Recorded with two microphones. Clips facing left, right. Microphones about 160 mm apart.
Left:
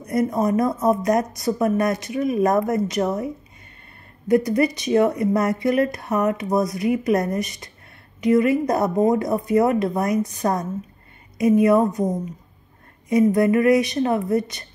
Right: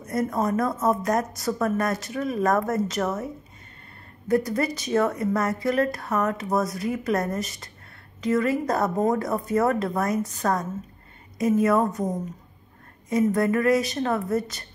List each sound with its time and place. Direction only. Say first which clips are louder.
0.0 s speech: left 4 dB; 15° left (ahead or behind)
4.3 s speech: left 5 dB; 20° left (ahead or behind)
13.3 s speech: left 4 dB; 20° left (ahead or behind)